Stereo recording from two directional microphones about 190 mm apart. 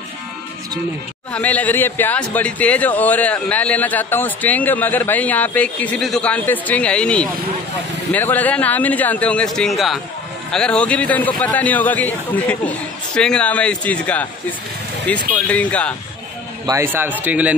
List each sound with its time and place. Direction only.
1.3 s speech: 10° left (ahead or behind)
16.6 s a man's voice: 15° right (ahead or behind)